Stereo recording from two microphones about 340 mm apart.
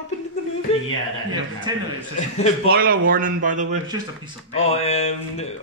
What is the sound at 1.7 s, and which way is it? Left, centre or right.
Speech, centre.